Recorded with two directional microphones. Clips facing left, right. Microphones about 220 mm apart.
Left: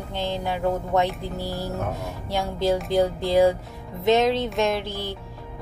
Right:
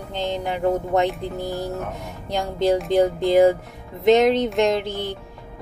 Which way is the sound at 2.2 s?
20° right (ahead or behind).